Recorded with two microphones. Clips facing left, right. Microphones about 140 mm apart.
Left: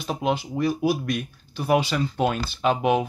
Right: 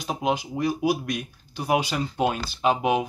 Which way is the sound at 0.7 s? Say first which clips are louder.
Left 1 dB; 50° left (ahead or behind).